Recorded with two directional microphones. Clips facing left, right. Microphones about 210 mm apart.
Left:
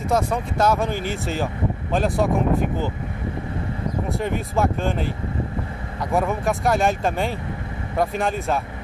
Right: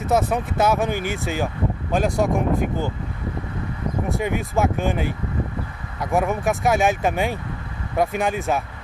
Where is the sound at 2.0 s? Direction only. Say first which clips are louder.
Even; centre (ahead or behind).